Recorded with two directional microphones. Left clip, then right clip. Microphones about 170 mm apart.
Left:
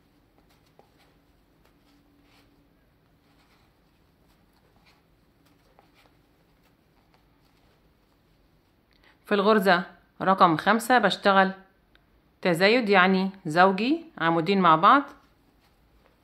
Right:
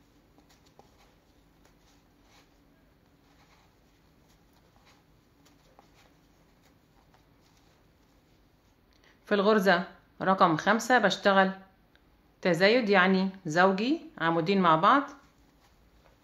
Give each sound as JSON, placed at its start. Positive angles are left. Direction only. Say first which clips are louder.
{"t": 9.0, "sound": "a woman's voice", "louder": "left 3 dB", "side_deg": 25}